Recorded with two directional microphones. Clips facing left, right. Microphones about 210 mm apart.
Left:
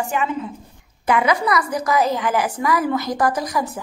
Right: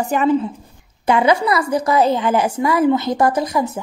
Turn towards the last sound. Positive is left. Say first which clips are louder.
# right 4 dB
turn(degrees=-25)  # may be behind; listen again after turning